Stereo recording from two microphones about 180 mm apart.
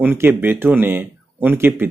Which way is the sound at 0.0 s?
10° right (ahead or behind).